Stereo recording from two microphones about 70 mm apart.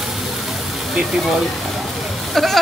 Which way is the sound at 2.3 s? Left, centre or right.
Centre.